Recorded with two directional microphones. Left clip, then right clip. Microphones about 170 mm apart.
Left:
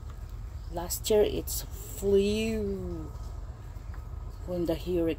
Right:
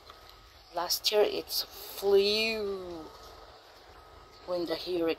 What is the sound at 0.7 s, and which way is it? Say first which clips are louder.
Speech: left 1 dB; 20° left (ahead or behind).